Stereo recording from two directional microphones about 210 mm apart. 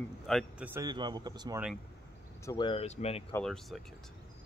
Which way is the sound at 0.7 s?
15° right (ahead or behind).